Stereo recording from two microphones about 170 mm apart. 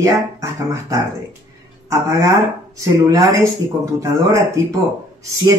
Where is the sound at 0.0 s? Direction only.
20° right (ahead or behind).